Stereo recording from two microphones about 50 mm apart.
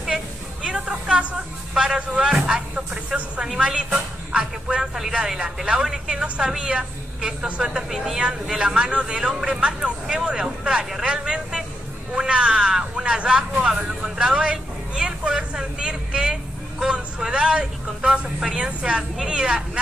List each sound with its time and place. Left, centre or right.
0.7 s a sound: centre
1.7 s speech: centre
6.2 s speech: right